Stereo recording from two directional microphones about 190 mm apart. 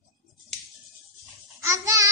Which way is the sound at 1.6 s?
15° right (ahead or behind).